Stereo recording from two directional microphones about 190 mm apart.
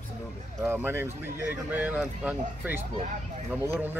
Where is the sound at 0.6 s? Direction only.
10° right (ahead or behind).